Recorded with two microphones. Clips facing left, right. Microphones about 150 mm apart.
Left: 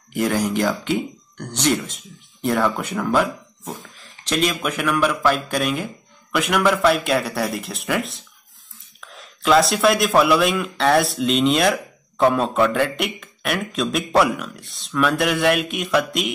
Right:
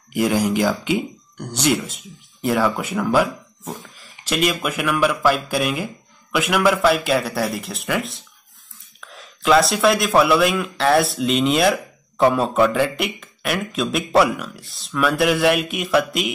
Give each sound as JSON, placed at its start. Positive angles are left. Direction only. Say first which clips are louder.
{"t": 0.1, "sound": "speech", "louder": "right 2 dB", "side_deg": -10}